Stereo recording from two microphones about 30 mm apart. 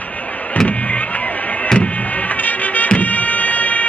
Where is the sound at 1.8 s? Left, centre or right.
Left.